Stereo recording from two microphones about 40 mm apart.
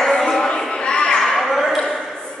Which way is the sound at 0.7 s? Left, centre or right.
Left.